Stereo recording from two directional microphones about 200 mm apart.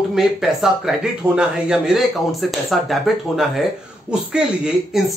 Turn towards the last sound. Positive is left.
turn(degrees=-5)  # may be behind; listen again after turning